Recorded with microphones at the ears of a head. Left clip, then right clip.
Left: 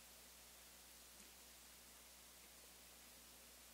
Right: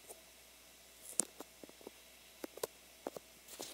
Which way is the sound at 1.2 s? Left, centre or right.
Right.